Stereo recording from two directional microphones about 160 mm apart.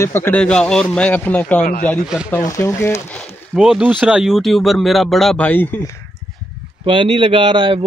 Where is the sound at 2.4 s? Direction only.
20° left (ahead or behind).